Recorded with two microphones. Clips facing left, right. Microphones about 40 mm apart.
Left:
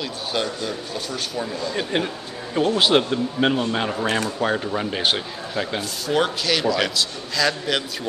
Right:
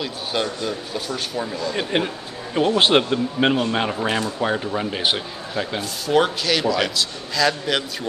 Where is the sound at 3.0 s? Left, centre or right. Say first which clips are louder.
Right 1 dB; centre.